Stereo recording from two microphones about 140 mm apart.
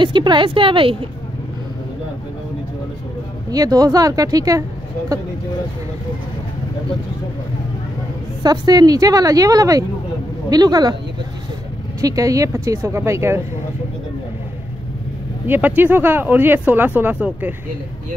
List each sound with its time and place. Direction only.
0.0 s a woman's voice: 35° right (ahead or behind)
3.4 s a woman's voice: 25° right (ahead or behind)
8.4 s a woman's voice: 30° right (ahead or behind)
12.0 s a woman's voice: 25° right (ahead or behind)
15.4 s speech: 15° right (ahead or behind)